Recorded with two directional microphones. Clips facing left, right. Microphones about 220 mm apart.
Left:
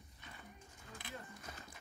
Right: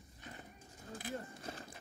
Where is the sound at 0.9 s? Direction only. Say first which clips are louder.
Right 7 dB; 40° right (ahead or behind).